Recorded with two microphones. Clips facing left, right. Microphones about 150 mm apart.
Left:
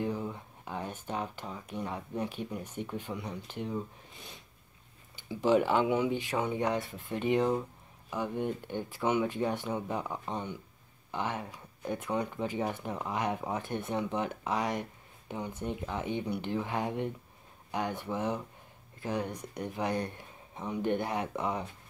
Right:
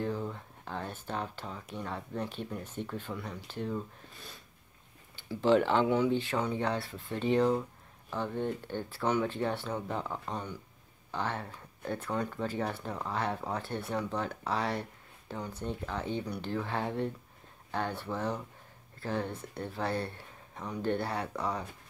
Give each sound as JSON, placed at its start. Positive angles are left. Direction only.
{"t": 0.0, "sound": "speech", "side_deg": 15}